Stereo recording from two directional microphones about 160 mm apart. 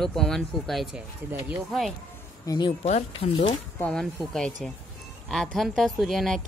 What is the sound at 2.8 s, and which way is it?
Speech, 45° left (ahead or behind).